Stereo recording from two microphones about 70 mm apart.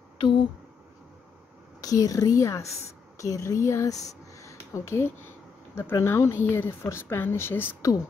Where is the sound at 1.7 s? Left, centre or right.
Left.